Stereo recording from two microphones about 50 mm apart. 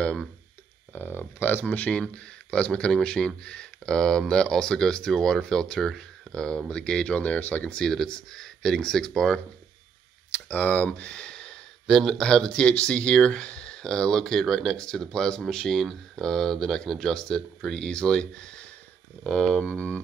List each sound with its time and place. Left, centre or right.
0.9 s speech: left
2.0 s speech: left
7.8 s speech: centre
10.3 s speech: left
10.9 s speech: left
19.7 s speech: left